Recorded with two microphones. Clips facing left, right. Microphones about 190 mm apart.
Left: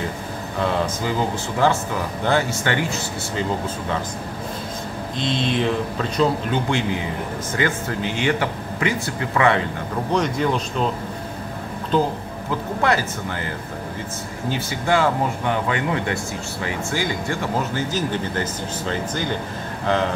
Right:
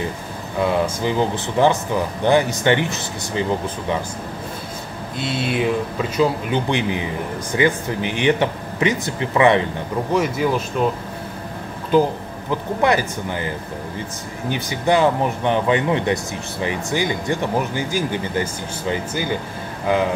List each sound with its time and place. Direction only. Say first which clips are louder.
0.6 s speech: right 3 dB; 15° right (ahead or behind)
5.1 s speech: even; 5° right (ahead or behind)
10.1 s speech: right 1 dB; 5° right (ahead or behind)
11.9 s speech: right 4 dB; 10° right (ahead or behind)
14.5 s speech: right 3 dB; 15° right (ahead or behind)